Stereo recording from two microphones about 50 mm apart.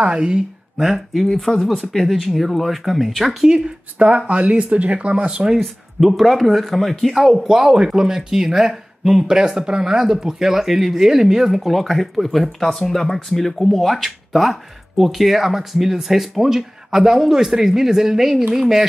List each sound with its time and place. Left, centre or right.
0.0 s speech: right
0.7 s speech: centre
1.2 s speech: centre
3.4 s speech: centre
5.6 s speech: centre
7.4 s speech: centre